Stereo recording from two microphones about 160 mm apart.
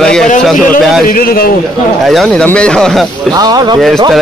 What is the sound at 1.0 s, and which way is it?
Speech, 65° left (ahead or behind).